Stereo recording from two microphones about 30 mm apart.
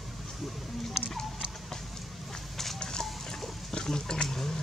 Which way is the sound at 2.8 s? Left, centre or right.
Left.